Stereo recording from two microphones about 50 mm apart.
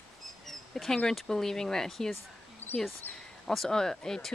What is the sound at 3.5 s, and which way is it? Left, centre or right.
Speech, centre.